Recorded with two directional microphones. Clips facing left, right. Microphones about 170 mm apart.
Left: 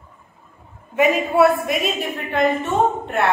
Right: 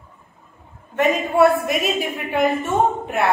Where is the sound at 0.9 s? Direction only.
Centre (ahead or behind).